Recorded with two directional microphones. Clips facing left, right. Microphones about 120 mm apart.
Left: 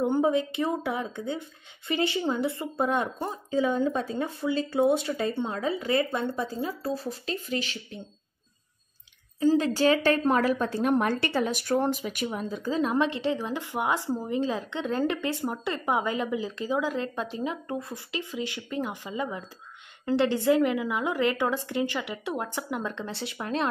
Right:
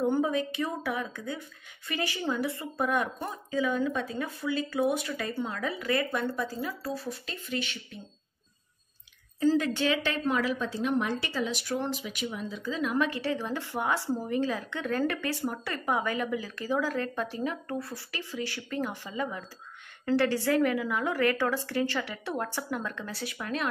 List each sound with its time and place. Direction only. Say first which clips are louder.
0.0 s a woman's voice: left 3 dB; 20° left (ahead or behind)
9.6 s a woman's voice: left 5 dB; 40° left (ahead or behind)
12.9 s a woman's voice: left 3 dB; 25° left (ahead or behind)